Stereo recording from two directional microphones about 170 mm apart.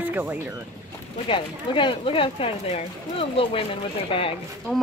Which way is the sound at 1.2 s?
30° left (ahead or behind).